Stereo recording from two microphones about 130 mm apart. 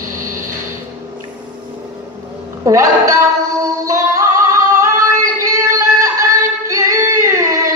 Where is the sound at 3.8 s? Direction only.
25° right (ahead or behind).